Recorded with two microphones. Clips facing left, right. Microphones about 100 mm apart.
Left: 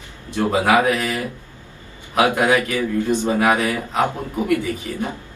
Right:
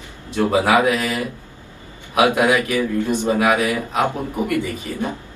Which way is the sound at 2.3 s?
15° right (ahead or behind).